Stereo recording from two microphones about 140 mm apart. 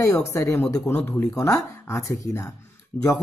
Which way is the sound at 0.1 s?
20° left (ahead or behind).